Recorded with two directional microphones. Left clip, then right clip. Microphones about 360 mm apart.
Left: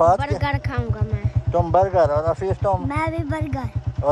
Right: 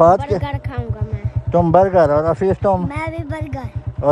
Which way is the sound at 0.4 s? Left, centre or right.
Centre.